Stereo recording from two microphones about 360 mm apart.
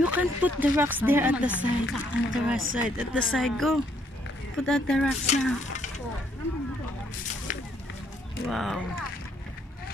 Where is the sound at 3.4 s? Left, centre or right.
Centre.